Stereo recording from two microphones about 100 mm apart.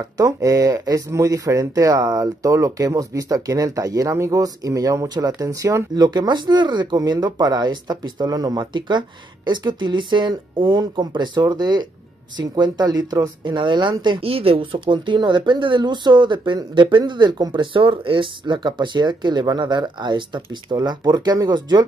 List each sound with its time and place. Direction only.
0.2 s speech: 35° right (ahead or behind); by 14.2 s 50° right (ahead or behind)
14.2 s speech: 70° right (ahead or behind); by 21.8 s 45° right (ahead or behind)